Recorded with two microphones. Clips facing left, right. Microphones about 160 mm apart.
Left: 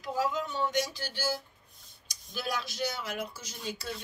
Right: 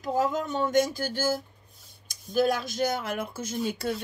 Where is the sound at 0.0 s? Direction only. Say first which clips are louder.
Right 5 dB; 50° right (ahead or behind).